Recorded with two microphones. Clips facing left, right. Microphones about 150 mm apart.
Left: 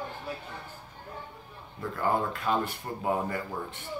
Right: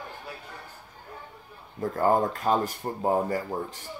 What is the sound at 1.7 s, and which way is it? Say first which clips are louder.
Speech: right 5 dB; 40° right (ahead or behind).